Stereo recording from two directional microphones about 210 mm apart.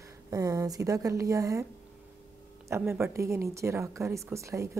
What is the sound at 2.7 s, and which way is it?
A woman's voice, 10° right (ahead or behind).